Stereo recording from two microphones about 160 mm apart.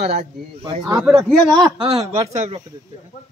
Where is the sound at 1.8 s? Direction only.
40° right (ahead or behind).